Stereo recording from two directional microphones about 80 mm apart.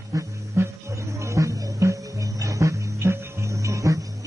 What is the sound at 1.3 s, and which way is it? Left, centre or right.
Music, right.